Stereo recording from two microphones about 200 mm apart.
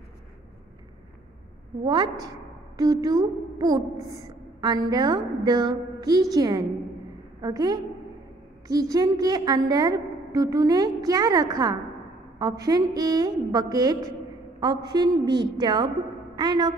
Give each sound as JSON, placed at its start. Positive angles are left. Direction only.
{"t": 2.8, "sound": "speech", "side_deg": -20}